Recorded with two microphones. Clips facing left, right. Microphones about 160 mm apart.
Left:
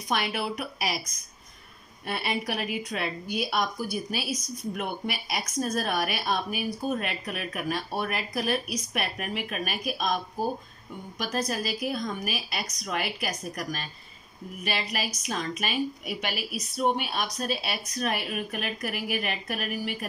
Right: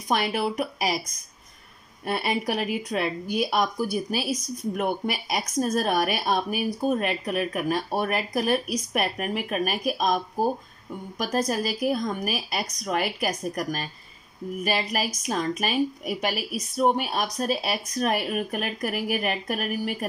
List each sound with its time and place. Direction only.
0.1 s speech: 40° right (ahead or behind)
2.0 s speech: 40° right (ahead or behind)